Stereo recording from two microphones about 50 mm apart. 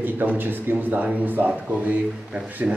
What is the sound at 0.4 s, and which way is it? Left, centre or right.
Speech, right.